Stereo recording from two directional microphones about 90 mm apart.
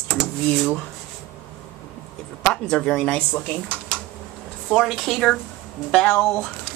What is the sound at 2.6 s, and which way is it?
Speech, 10° left (ahead or behind).